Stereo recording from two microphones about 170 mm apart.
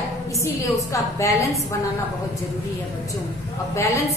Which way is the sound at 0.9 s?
20° left (ahead or behind).